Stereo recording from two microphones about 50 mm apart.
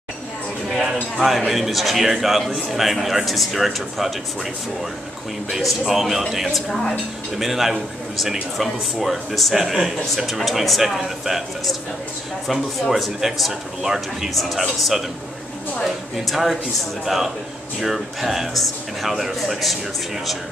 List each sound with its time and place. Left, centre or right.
1.1 s a man's voice: centre
5.5 s a man's voice: centre
7.3 s a man's voice: centre
12.9 s a man's voice: centre